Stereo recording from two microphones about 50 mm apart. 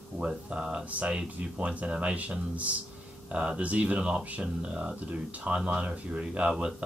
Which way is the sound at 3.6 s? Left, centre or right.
Right.